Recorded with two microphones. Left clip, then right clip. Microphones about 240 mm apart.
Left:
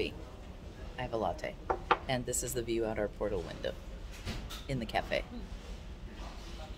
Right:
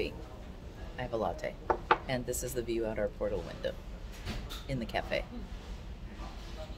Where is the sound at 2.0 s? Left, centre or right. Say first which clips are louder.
Even; centre.